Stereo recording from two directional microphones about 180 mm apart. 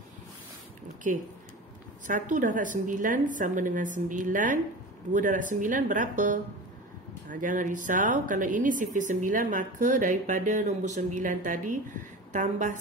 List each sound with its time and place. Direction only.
1.0 s a woman's voice: 45° right (ahead or behind)